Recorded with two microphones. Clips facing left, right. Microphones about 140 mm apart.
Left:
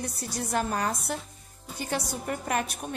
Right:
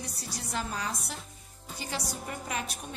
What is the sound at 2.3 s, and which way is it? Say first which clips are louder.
Speech: left 8 dB; 55° left (ahead or behind).